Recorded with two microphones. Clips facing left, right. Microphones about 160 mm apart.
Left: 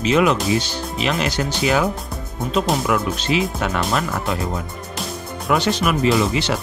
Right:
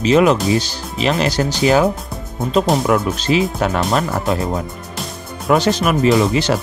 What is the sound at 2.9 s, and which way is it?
Speech, 40° right (ahead or behind).